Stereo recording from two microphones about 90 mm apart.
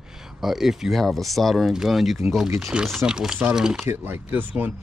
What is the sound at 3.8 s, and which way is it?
Speech, 25° right (ahead or behind).